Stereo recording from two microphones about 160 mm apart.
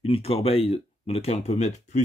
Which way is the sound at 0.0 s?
35° left (ahead or behind).